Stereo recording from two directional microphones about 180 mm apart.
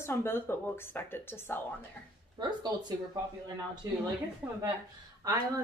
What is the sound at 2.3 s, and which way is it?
Speech, 25° right (ahead or behind).